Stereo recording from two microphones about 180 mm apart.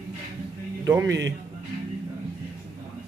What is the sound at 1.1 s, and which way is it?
Speech, 80° right.